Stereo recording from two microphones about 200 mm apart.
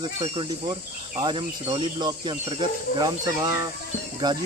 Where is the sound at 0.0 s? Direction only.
25° right (ahead or behind).